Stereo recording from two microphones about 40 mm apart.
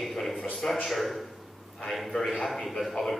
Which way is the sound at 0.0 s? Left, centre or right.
Centre.